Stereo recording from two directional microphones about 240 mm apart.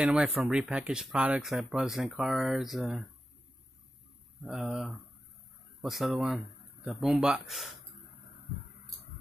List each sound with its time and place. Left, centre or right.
0.0 s speech: centre
4.5 s speech: centre